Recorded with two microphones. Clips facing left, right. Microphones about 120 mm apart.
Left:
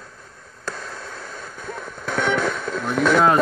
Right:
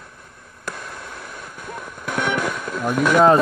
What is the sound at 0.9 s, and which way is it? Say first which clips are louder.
Fireworks: left 1 dB; 15° right (ahead or behind).